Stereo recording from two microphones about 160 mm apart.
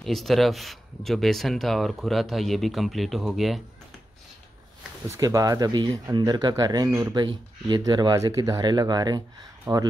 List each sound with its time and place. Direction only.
0.0 s speech: centre (ahead or behind)
5.0 s speech: 20° right (ahead or behind)